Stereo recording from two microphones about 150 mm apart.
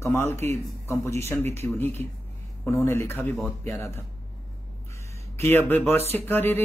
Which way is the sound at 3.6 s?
20° left (ahead or behind).